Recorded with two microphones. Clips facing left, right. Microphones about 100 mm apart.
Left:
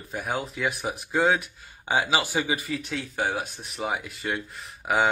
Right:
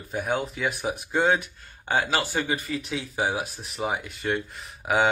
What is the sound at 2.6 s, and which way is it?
Speech, centre (ahead or behind).